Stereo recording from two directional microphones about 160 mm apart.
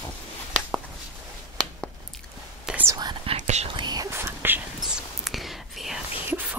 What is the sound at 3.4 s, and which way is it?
Whispering, 45° right (ahead or behind).